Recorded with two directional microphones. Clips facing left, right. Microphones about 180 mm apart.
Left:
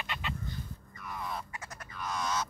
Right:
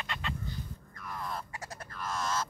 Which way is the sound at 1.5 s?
30° right (ahead or behind).